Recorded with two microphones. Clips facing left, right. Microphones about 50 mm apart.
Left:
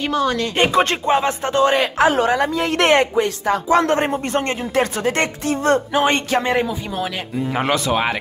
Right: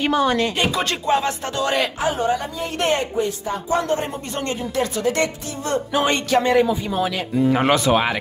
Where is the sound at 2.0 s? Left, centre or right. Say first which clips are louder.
Left 5 dB; left.